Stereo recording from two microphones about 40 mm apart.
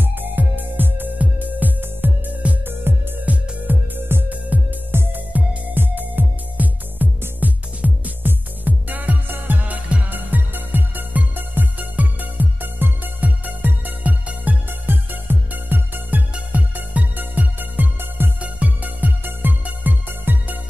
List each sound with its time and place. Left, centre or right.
0.0 s music: right
1.1 s music: right
2.9 s music: right
3.3 s music: right
5.8 s music: right
6.5 s music: right
9.3 s music: right
9.6 s music: right
14.7 s music: right
16.3 s music: right
18.4 s music: right